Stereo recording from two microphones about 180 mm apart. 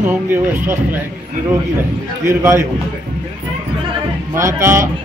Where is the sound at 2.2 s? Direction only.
15° right (ahead or behind).